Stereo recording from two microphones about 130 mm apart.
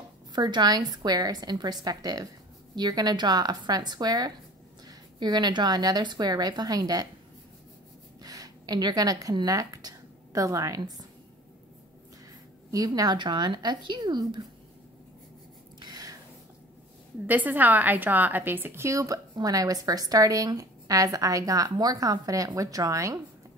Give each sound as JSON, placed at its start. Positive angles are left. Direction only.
{"t": 0.3, "sound": "a woman's voice", "side_deg": -35}
{"t": 8.2, "sound": "speech", "side_deg": -30}
{"t": 12.7, "sound": "a woman's voice", "side_deg": -30}
{"t": 15.8, "sound": "a sound", "side_deg": -30}
{"t": 17.3, "sound": "a woman's voice", "side_deg": -15}